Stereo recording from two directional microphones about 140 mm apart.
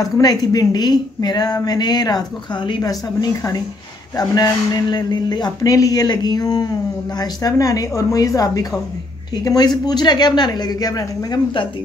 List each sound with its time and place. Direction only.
0.0 s a woman's voice: 25° left (ahead or behind)